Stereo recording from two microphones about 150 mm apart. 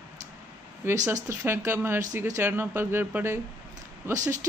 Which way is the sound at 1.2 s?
15° right (ahead or behind).